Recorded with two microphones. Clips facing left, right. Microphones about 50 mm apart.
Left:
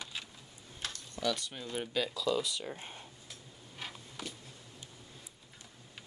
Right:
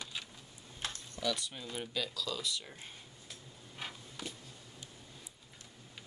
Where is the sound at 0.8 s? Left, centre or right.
Right.